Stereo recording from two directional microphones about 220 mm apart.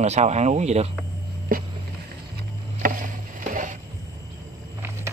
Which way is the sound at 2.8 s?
35° right (ahead or behind).